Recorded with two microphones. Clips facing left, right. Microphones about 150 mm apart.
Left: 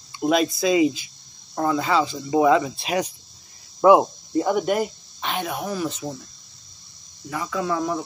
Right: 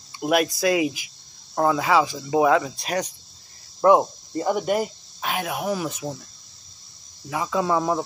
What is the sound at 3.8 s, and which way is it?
Speech, 5° left (ahead or behind).